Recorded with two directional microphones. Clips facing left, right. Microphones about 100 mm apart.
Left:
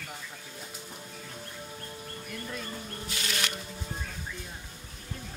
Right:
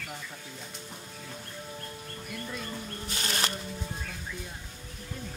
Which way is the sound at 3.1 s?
35° right (ahead or behind).